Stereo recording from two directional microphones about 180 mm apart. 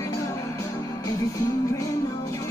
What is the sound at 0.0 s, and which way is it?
Music, 20° left (ahead or behind).